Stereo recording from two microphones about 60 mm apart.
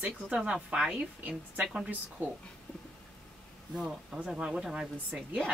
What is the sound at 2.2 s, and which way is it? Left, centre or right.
Speech, right.